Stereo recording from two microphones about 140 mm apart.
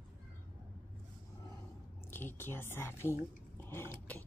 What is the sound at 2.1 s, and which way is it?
A woman's voice, 15° left (ahead or behind).